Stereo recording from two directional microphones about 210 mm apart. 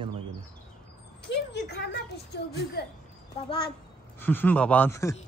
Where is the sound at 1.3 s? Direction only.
55° left (ahead or behind).